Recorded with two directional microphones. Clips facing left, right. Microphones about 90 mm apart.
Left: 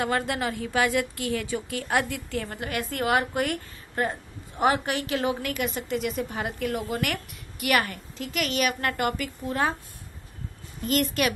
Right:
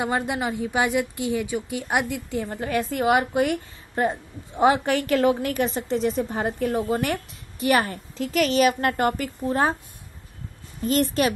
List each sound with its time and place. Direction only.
0.0 s a woman's voice: 20° right (ahead or behind)
4.8 s a woman's voice: 45° right (ahead or behind)
10.8 s a woman's voice: 35° right (ahead or behind)